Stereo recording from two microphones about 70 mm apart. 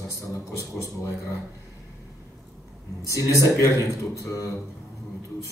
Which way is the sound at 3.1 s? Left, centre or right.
Left.